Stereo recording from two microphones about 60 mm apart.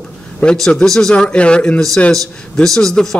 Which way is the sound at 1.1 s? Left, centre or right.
Centre.